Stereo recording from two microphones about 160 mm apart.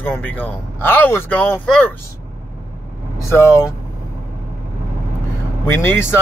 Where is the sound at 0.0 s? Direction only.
10° left (ahead or behind).